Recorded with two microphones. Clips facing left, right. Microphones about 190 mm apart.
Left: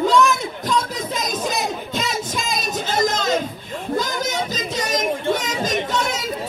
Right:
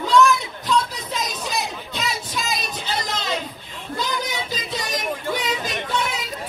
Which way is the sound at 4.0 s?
45° left (ahead or behind).